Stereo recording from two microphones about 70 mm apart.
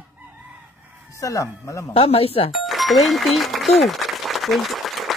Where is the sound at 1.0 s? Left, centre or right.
Left.